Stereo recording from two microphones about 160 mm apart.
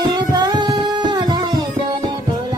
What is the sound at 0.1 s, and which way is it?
Music, 25° right (ahead or behind).